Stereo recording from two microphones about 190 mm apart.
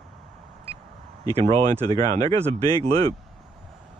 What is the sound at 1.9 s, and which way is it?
Speech, 20° left (ahead or behind).